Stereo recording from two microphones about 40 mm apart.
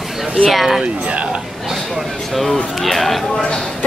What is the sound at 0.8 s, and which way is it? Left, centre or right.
Speech, right.